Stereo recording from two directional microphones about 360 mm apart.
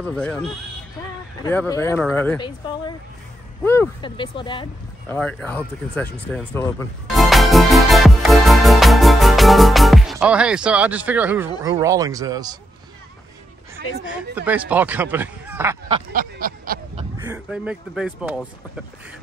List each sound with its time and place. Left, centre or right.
0.0 s speech: centre
1.4 s speech: centre
3.6 s speech: centre
14.3 s speech: centre
16.1 s a sound: right
17.2 s speech: centre